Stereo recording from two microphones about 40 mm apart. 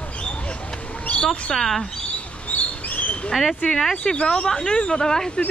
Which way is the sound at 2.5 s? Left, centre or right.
Left.